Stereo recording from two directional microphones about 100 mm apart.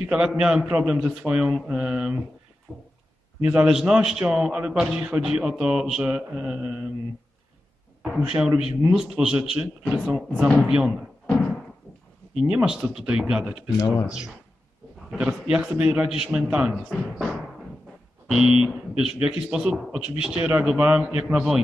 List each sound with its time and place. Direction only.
0.0 s a man's voice: 10° right (ahead or behind)
2.7 s a sound: 10° left (ahead or behind)
3.4 s a man's voice: 10° right (ahead or behind)
8.2 s a man's voice: 10° right (ahead or behind)
12.4 s a man's voice: 10° right (ahead or behind)
13.7 s speech: 35° left (ahead or behind)
14.0 s a man's voice: 10° right (ahead or behind)